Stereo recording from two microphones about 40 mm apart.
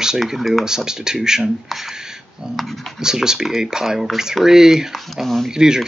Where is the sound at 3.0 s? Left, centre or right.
Centre.